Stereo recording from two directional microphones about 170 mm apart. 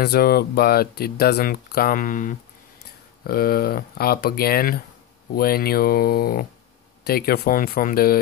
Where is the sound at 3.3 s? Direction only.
60° left (ahead or behind).